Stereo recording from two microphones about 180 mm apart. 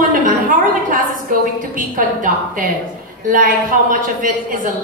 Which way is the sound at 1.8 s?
50° right (ahead or behind).